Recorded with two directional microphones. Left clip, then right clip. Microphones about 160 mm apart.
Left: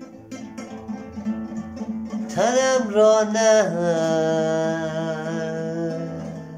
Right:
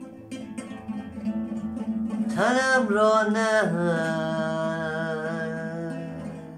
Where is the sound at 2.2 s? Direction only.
15° left (ahead or behind).